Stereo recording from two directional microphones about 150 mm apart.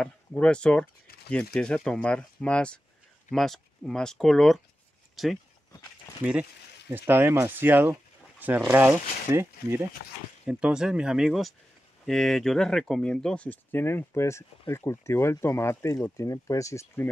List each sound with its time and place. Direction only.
0.0 s speech: 5° left (ahead or behind)
1.0 s a sound: 90° left
1.5 s speech: 5° left (ahead or behind)